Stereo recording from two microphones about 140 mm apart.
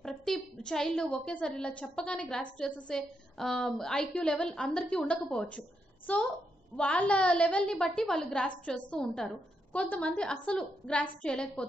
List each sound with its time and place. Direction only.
0.0 s a woman's voice: 5° left (ahead or behind)